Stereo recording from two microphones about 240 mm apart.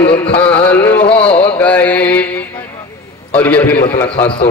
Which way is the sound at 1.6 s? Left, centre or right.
Centre.